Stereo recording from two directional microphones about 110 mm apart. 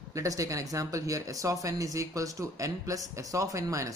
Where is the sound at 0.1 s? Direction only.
30° right (ahead or behind).